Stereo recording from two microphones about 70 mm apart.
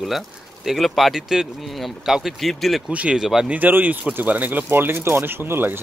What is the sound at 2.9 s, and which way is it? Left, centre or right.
Speech, centre.